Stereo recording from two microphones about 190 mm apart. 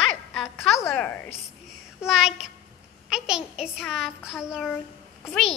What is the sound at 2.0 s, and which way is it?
A woman's voice, 5° right (ahead or behind).